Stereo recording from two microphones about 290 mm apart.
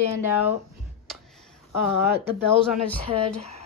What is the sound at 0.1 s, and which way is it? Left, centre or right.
Speech, centre.